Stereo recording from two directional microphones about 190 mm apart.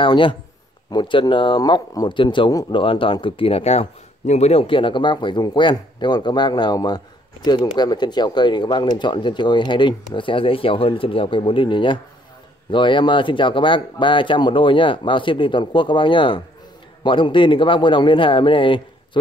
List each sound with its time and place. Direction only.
0.0 s speech: 25° left (ahead or behind)